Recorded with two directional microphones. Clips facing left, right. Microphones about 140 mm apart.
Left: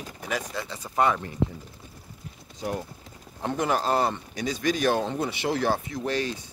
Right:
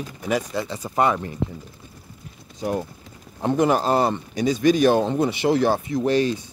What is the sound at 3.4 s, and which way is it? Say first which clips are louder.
Speech: right 6 dB; 20° right (ahead or behind).